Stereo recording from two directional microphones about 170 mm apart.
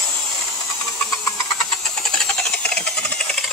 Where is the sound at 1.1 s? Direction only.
20° left (ahead or behind).